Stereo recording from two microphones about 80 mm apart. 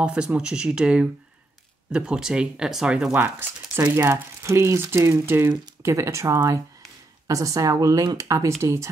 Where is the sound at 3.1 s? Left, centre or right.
Right.